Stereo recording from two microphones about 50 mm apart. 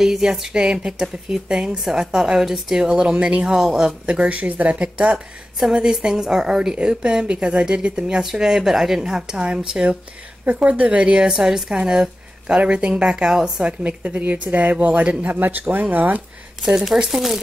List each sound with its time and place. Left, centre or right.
0.0 s speech: centre
5.8 s a woman's voice: centre; by 15.1 s right
15.2 s speech: right
16.8 s speech: centre